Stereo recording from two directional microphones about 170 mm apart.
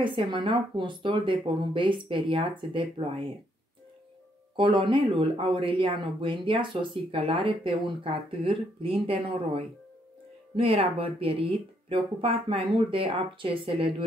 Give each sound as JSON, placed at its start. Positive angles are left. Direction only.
{"t": 0.0, "sound": "speech", "side_deg": -30}
{"t": 4.6, "sound": "speech", "side_deg": -30}